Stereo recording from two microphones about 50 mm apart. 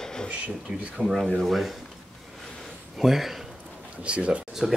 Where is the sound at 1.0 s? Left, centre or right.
Centre.